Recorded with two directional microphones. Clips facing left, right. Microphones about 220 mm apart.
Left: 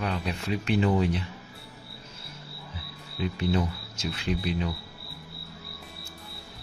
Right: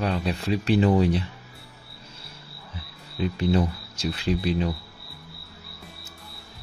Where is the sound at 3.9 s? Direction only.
35° right (ahead or behind).